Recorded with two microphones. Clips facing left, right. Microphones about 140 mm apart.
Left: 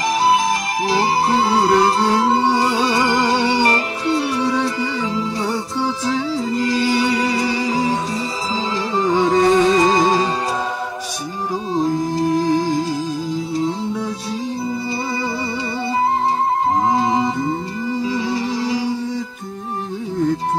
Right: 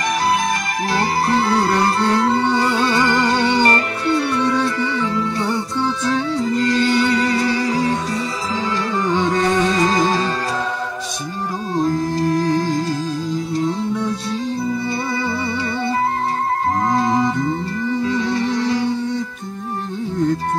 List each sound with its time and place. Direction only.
0.8 s music: 25° left (ahead or behind)
4.1 s music: 25° left (ahead or behind)
6.7 s music: 20° left (ahead or behind)
9.0 s carnatic music: 10° left (ahead or behind)
9.3 s music: 20° left (ahead or behind)
11.7 s music: 10° left (ahead or behind)
16.8 s music: 20° left (ahead or behind)
18.0 s music: 5° left (ahead or behind)